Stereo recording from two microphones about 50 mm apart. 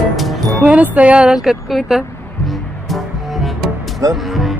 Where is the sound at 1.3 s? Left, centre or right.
Centre.